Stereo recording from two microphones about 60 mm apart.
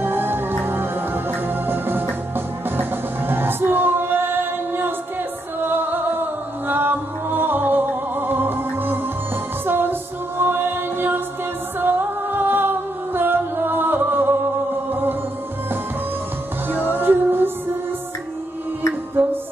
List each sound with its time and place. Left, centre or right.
0.0 s music: right
16.6 s music: right